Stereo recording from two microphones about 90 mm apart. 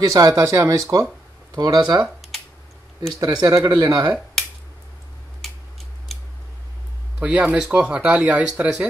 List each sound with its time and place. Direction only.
0.0 s speech: 40° right (ahead or behind)
3.2 s speech: 50° right (ahead or behind)
5.4 s a sound: 5° left (ahead or behind)
7.2 s speech: 15° right (ahead or behind)